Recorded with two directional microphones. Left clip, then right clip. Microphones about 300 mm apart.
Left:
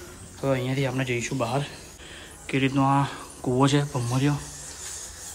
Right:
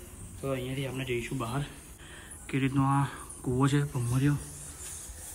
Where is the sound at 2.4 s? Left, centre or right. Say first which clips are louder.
Left 7 dB; centre.